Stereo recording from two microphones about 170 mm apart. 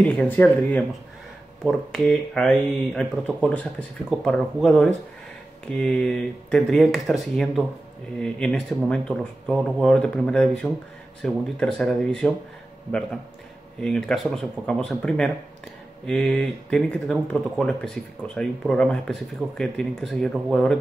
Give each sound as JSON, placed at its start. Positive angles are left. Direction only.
{"t": 0.0, "sound": "speech", "side_deg": 10}
{"t": 13.7, "sound": "speech", "side_deg": 5}